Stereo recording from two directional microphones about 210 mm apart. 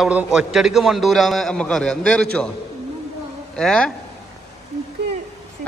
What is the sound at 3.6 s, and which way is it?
Speech, 5° left (ahead or behind).